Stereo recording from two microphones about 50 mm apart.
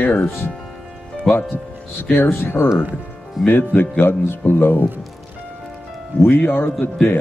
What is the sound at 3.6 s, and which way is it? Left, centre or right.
Speech, left.